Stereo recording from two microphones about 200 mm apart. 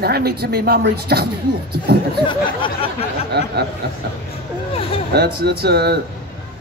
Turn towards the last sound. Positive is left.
turn(degrees=-55)  # may be behind; listen again after turning